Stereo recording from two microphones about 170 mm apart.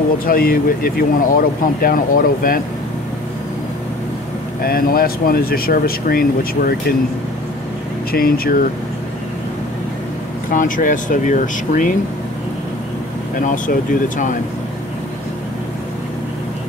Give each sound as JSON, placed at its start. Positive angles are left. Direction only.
{"t": 0.2, "sound": "speech", "side_deg": 60}
{"t": 4.6, "sound": "speech", "side_deg": 60}
{"t": 8.1, "sound": "speech", "side_deg": 60}
{"t": 10.5, "sound": "speech", "side_deg": 50}
{"t": 13.4, "sound": "speech", "side_deg": 50}